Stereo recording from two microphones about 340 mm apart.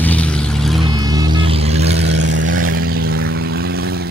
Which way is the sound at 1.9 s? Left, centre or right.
Right.